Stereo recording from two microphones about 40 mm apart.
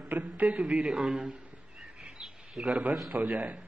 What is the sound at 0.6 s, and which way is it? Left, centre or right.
Speech, right.